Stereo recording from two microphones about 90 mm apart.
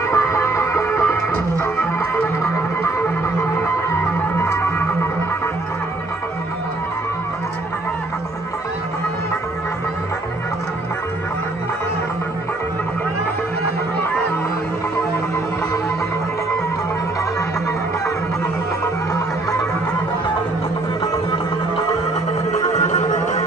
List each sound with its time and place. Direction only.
0.1 s music: 35° left (ahead or behind)